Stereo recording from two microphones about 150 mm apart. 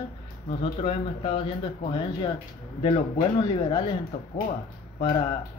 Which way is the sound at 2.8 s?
35° left (ahead or behind).